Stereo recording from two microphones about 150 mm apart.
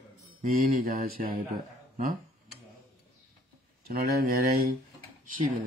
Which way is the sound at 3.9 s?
90° right.